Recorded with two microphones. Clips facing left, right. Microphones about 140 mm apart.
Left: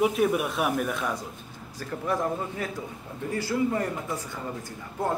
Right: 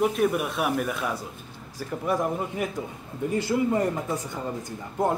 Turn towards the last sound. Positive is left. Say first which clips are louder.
# right 4 dB
turn(degrees=-20)  # may be behind; listen again after turning